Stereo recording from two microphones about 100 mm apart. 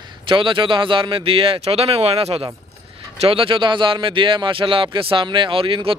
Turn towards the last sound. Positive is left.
turn(degrees=-60)  # may be behind; listen again after turning